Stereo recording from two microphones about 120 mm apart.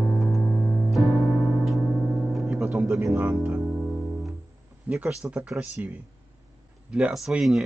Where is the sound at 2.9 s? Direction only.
25° right (ahead or behind).